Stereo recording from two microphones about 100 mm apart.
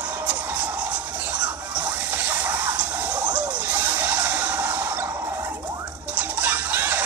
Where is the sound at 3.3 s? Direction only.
15° right (ahead or behind).